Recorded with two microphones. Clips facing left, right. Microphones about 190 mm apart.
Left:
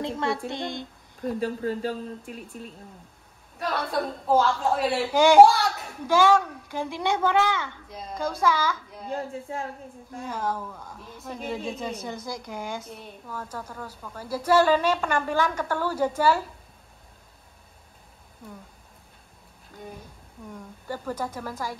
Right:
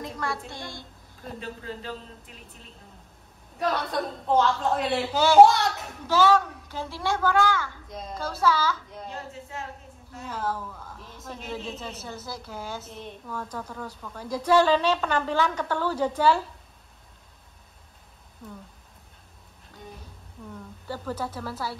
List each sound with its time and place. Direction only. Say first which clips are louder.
0.0 s a woman's voice: left 5 dB; 25° left (ahead or behind)
1.4 s speech: left 9 dB; 45° left (ahead or behind)
3.5 s a woman's voice: even; centre (ahead or behind)
5.1 s a woman's voice: left 4 dB; 15° left (ahead or behind)
5.4 s a sound: right 2 dB; centre (ahead or behind)
6.0 s a woman's voice: left 1 dB; 10° left (ahead or behind)
7.9 s a woman's voice: right 2 dB; centre (ahead or behind)
8.2 s a woman's voice: left 1 dB; 15° left (ahead or behind)
9.1 s speech: left 10 dB; 50° left (ahead or behind)
10.1 s a woman's voice: left 1 dB; 10° left (ahead or behind)
11.0 s a woman's voice: left 4 dB; centre (ahead or behind)
11.5 s a woman's voice: left 3 dB; 15° left (ahead or behind)
20.4 s a woman's voice: even; 10° left (ahead or behind)